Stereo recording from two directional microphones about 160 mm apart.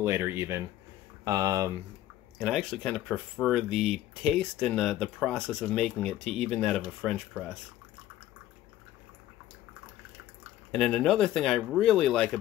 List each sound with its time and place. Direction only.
0.0 s speech: 15° right (ahead or behind)
2.3 s speech: centre (ahead or behind)
10.7 s speech: centre (ahead or behind)